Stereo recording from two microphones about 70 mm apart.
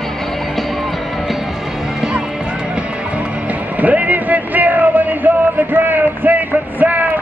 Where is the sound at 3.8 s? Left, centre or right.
Right.